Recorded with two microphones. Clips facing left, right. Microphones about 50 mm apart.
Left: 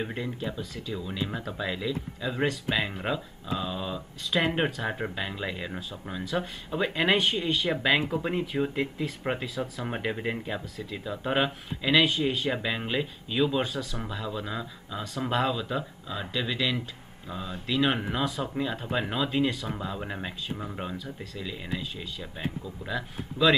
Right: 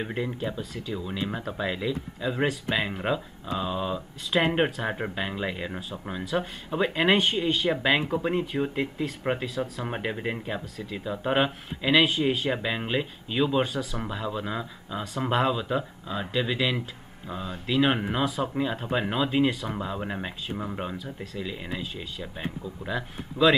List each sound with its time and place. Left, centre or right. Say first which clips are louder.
0.1 s speech: right 3 dB; centre
23.4 s speech: right 2 dB; right